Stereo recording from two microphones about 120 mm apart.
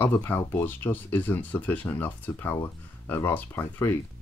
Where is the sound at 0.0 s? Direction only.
15° left (ahead or behind).